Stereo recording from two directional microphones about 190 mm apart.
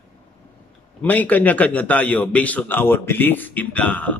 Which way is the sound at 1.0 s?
10° left (ahead or behind).